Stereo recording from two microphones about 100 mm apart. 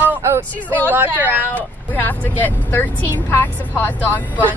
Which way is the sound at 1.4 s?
20° left (ahead or behind).